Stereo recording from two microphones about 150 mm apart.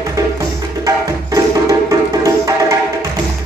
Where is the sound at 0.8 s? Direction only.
20° right (ahead or behind).